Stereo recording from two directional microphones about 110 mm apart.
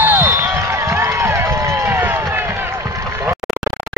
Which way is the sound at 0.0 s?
20° right (ahead or behind).